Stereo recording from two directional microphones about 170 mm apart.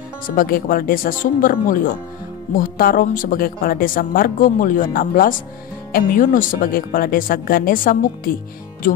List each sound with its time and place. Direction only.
0.3 s a woman's voice: 60° left (ahead or behind)